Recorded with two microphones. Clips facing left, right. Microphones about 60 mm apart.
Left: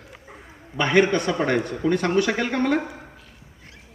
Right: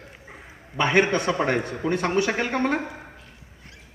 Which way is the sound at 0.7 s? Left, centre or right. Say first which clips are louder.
Left 2 dB; right.